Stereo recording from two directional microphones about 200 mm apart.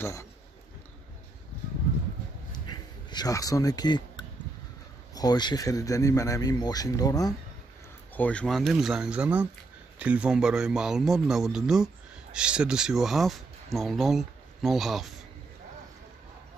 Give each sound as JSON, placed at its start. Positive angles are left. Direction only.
{"t": 0.0, "sound": "speech", "side_deg": 15}
{"t": 3.1, "sound": "speech", "side_deg": 20}
{"t": 8.1, "sound": "a man's voice", "side_deg": 5}